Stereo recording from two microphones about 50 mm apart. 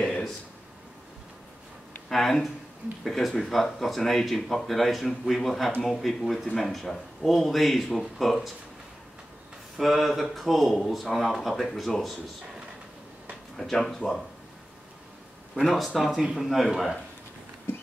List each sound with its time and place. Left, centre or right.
2.0 s speech: centre
9.8 s speech: centre
13.6 s speech: centre
15.5 s speech: centre
17.7 s a sound: left